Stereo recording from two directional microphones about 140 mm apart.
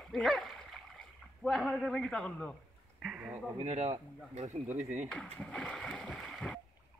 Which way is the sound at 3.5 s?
55° right (ahead or behind).